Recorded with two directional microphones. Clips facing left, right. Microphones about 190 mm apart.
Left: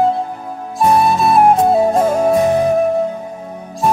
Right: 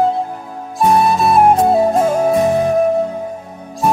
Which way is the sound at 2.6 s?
Centre (ahead or behind).